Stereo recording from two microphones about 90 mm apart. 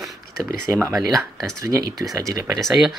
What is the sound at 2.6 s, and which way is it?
Speech, centre (ahead or behind).